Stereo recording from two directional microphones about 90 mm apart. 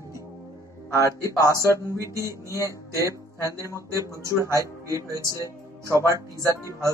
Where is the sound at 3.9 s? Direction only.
35° right (ahead or behind).